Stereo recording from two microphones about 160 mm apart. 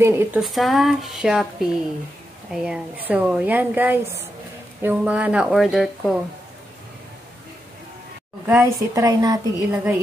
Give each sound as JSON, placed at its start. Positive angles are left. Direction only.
{"t": 0.0, "sound": "a woman's voice", "side_deg": -15}
{"t": 0.4, "sound": "a woman's voice", "side_deg": 0}
{"t": 8.5, "sound": "a woman's voice", "side_deg": -20}